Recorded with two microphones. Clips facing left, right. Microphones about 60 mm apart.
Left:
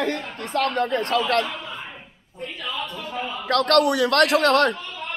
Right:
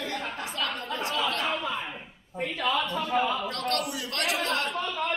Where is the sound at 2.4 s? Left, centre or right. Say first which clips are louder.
Right 3 dB; right.